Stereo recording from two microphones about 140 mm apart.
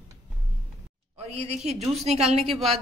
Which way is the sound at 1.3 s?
50° right (ahead or behind).